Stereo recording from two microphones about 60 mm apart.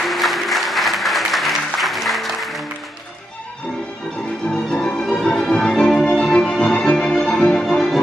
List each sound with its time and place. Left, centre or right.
0.0 s applause: centre
4.5 s music: centre